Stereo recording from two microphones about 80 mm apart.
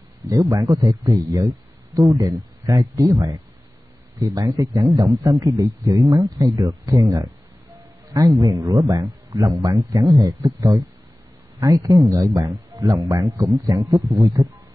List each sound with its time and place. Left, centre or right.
0.3 s a man's voice: right
8.1 s a man's voice: right